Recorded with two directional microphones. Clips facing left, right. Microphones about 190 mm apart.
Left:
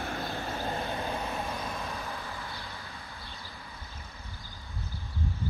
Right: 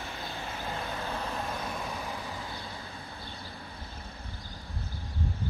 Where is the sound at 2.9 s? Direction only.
30° right (ahead or behind).